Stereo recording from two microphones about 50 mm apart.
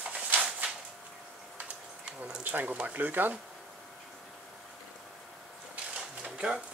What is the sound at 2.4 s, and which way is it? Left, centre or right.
Speech, right.